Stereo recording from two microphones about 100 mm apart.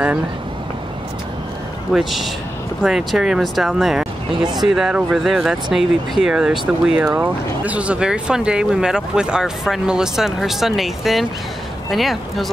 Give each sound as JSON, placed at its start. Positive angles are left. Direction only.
{"t": 1.9, "sound": "speech", "side_deg": 0}